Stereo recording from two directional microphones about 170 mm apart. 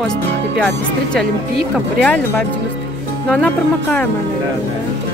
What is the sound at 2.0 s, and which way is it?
A woman's voice, 5° left (ahead or behind).